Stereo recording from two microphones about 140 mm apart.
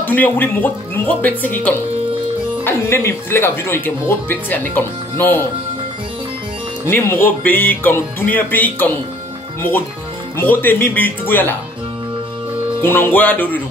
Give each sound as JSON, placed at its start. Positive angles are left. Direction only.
{"t": 0.0, "sound": "speech", "side_deg": 15}
{"t": 6.9, "sound": "speech", "side_deg": 15}
{"t": 10.3, "sound": "speech", "side_deg": 15}
{"t": 12.8, "sound": "speech", "side_deg": 15}